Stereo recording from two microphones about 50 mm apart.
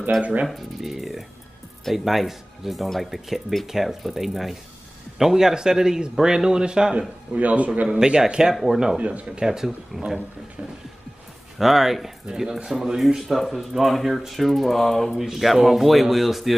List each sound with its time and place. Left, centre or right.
0.2 s a man's voice: right
0.5 s speech: centre
7.3 s a man's voice: right
8.0 s speech: centre
11.5 s speech: centre
12.3 s speech: centre
15.1 s speech: centre